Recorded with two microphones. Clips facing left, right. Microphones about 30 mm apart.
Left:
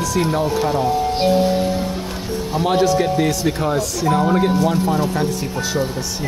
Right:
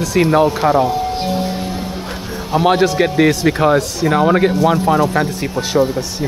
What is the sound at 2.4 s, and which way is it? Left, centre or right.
Music, right.